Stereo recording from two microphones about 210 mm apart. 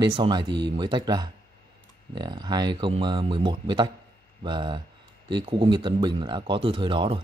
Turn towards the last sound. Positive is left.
turn(degrees=-25)  # may be behind; listen again after turning